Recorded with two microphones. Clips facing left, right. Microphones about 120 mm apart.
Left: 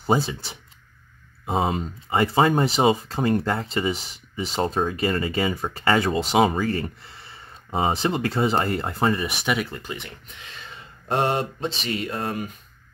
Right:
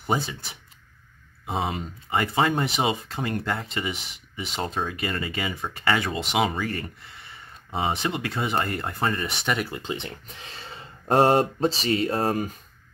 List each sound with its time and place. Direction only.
0.0 s speech: 30° left (ahead or behind)
9.0 s speech: 10° left (ahead or behind)
9.8 s speech: 25° right (ahead or behind)
10.2 s speech: 35° right (ahead or behind)